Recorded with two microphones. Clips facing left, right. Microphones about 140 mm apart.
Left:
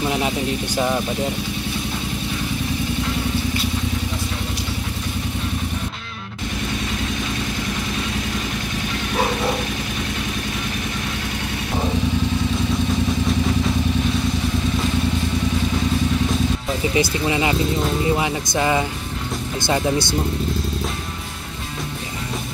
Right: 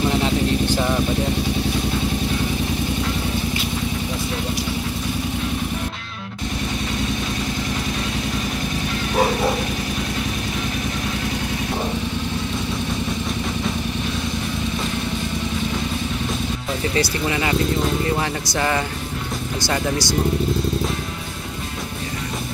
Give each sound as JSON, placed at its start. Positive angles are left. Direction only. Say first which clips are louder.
{"t": 16.9, "sound": "speech", "louder": "left 2 dB", "side_deg": 20}